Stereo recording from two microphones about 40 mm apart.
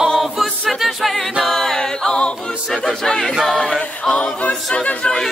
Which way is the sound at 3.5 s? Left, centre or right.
Centre.